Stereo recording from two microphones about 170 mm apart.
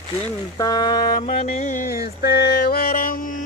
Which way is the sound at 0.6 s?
25° left (ahead or behind).